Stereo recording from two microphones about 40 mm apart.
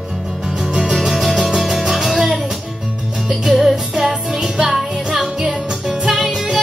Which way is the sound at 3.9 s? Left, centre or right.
Centre.